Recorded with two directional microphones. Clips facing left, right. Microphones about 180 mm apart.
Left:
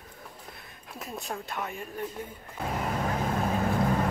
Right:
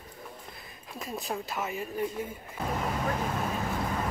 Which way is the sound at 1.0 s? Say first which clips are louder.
Right 2 dB; centre (ahead or behind).